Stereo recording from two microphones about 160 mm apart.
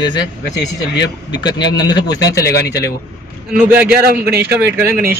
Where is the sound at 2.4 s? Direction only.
80° left.